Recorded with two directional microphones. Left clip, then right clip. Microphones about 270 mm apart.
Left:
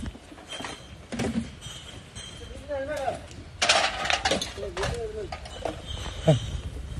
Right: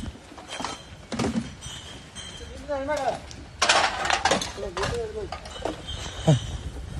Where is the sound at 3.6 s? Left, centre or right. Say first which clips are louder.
Right 2 dB; right.